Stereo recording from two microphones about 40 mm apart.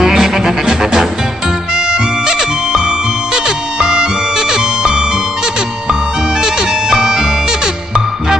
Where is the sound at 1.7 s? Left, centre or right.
Centre.